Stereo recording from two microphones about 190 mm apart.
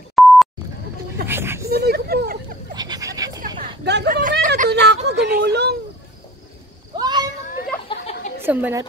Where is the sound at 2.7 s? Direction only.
20° right (ahead or behind).